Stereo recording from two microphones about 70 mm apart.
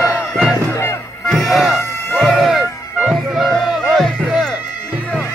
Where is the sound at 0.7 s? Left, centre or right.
Left.